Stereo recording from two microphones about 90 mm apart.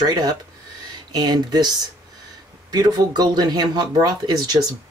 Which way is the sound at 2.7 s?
50° right (ahead or behind).